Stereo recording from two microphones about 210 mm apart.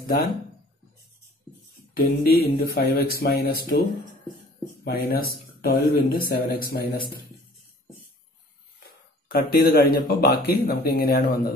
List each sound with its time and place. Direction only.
2.0 s speech: 45° left (ahead or behind)
4.8 s speech: 45° left (ahead or behind)
9.3 s speech: 50° left (ahead or behind)